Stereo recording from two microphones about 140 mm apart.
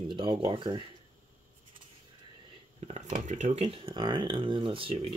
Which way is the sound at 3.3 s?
60° right (ahead or behind).